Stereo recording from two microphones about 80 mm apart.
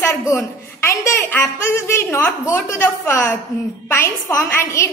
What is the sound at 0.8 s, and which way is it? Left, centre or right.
A woman's voice, left.